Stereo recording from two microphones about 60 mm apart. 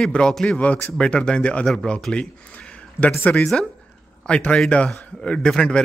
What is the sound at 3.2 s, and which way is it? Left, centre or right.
Speech, left.